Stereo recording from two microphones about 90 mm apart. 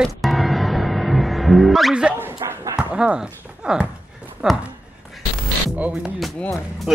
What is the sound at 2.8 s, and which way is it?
Speech, 10° right (ahead or behind).